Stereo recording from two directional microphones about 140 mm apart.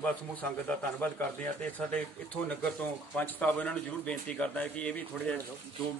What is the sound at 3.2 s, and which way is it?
Speech, 10° left (ahead or behind).